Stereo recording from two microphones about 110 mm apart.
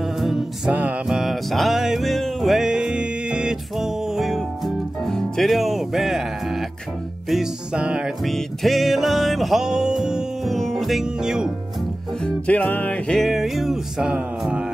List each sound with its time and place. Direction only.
0.0 s music: centre (ahead or behind)
12.2 s music: 10° left (ahead or behind); by 14.7 s 10° right (ahead or behind)